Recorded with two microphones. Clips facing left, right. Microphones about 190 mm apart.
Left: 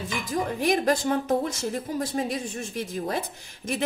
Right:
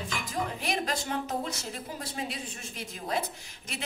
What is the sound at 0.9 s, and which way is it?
Speech, 50° left (ahead or behind).